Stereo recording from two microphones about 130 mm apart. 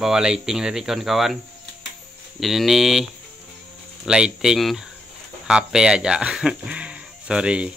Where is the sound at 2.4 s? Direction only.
Centre (ahead or behind).